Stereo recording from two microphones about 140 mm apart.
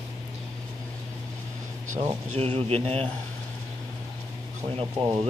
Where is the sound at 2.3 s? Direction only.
45° right (ahead or behind).